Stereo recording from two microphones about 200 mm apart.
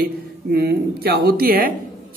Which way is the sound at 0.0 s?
50° right (ahead or behind).